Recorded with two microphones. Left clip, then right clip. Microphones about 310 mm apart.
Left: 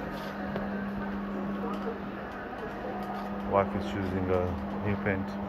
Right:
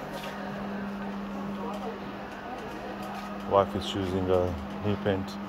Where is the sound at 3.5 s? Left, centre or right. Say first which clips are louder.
Right 3 dB; right.